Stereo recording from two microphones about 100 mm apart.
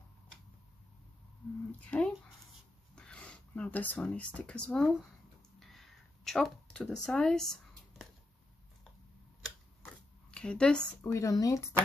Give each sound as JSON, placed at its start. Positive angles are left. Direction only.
{"t": 1.9, "sound": "speech", "side_deg": 10}
{"t": 5.6, "sound": "a sound", "side_deg": 5}
{"t": 10.3, "sound": "speech", "side_deg": 10}
{"t": 11.0, "sound": "speech", "side_deg": 35}